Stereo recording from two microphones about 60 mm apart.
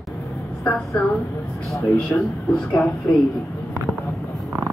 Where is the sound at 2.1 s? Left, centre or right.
Left.